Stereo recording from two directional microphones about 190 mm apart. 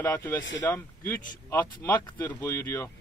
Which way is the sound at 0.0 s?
10° left (ahead or behind).